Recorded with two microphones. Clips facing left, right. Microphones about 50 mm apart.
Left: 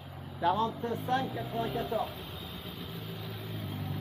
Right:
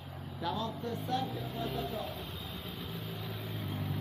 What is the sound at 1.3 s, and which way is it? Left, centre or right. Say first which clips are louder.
Speech: left 4 dB; centre.